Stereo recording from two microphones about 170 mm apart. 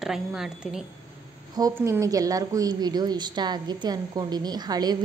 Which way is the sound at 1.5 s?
20° right (ahead or behind).